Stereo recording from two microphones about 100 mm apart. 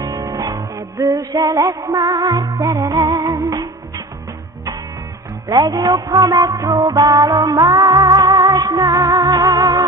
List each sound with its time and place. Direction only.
0.0 s music: 35° right (ahead or behind)
5.5 s music: 40° right (ahead or behind)